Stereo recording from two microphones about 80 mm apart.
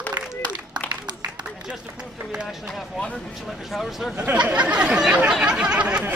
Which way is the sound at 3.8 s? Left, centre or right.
Centre.